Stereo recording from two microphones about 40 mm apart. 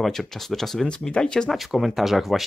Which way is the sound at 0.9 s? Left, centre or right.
Left.